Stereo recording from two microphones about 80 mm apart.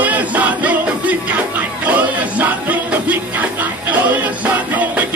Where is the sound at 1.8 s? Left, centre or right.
Right.